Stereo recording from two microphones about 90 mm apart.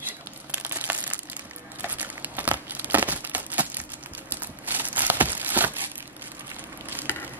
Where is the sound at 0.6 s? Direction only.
20° right (ahead or behind).